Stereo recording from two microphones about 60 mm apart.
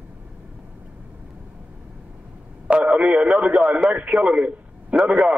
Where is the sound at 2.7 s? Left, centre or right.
Centre.